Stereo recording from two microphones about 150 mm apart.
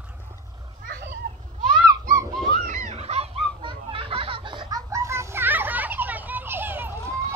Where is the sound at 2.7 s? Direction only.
50° right (ahead or behind); by 7.0 s 15° right (ahead or behind).